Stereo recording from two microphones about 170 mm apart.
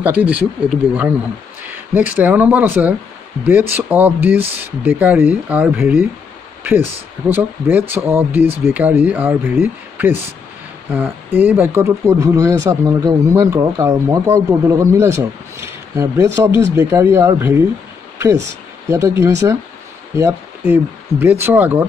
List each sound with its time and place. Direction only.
0.0 s speech: 10° right (ahead or behind)
1.7 s speech: 10° right (ahead or behind)
18.9 s speech: 15° right (ahead or behind)